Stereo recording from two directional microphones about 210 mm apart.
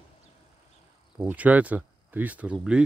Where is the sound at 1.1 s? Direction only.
5° right (ahead or behind).